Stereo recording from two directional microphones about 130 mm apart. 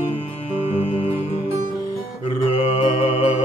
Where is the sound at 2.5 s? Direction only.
45° left (ahead or behind).